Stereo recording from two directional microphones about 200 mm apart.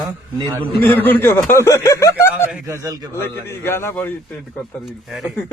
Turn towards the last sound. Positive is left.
turn(degrees=0)  # may be behind; listen again after turning